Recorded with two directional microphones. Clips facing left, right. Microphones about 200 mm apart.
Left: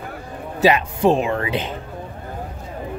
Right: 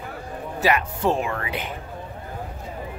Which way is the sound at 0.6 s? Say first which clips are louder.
Left 6 dB; 20° left (ahead or behind).